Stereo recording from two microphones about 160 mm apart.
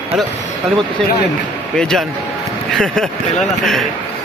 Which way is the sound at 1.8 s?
5° left (ahead or behind).